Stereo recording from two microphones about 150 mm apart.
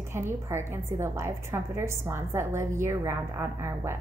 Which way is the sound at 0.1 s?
15° right (ahead or behind).